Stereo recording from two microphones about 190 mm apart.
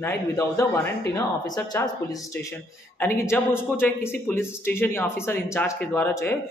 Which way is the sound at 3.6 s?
10° left (ahead or behind).